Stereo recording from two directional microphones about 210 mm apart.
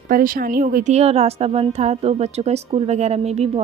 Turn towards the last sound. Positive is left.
turn(degrees=-30)  # may be behind; listen again after turning